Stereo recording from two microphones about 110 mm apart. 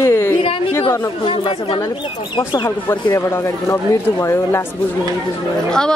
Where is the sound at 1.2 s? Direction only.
55° left (ahead or behind).